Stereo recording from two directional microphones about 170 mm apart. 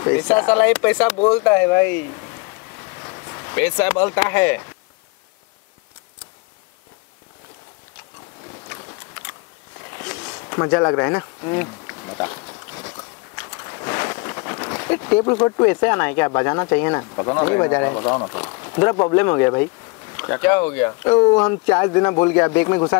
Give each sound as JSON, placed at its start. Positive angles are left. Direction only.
{"t": 0.0, "sound": "speech", "side_deg": 15}
{"t": 9.9, "sound": "insect", "side_deg": 20}
{"t": 17.0, "sound": "speech", "side_deg": 25}